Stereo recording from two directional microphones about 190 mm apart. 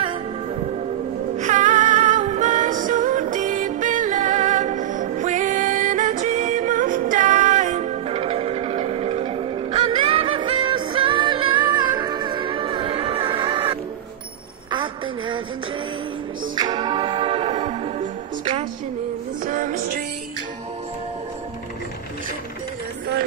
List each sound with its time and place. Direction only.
1.4 s music: 40° right (ahead or behind); by 13.7 s 25° right (ahead or behind)
14.7 s a sound: 25° right (ahead or behind)
16.5 s music: 20° right (ahead or behind)
19.4 s music: 45° right (ahead or behind)